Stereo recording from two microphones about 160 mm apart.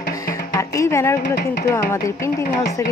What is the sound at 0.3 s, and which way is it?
Speech, 20° left (ahead or behind).